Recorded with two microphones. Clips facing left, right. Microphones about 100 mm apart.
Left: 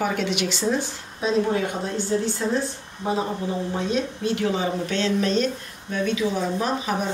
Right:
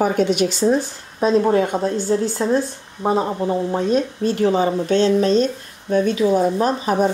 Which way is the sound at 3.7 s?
40° right (ahead or behind).